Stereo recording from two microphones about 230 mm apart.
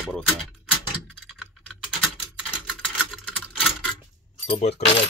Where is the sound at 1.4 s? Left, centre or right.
Centre.